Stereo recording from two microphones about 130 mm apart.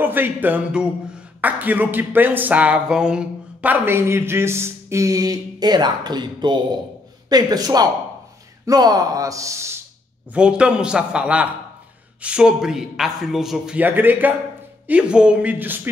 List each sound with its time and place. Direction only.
0.0 s a man's voice: 15° right (ahead or behind)
10.3 s a man's voice: 10° right (ahead or behind)